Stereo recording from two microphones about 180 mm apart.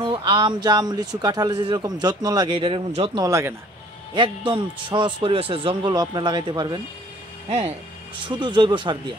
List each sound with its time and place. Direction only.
0.0 s speech: 30° right (ahead or behind)
3.2 s speech: 15° right (ahead or behind)
4.1 s speech: 25° right (ahead or behind)
7.4 s speech: 35° right (ahead or behind)